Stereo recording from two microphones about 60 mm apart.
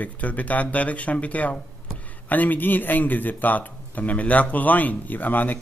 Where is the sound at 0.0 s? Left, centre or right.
Left.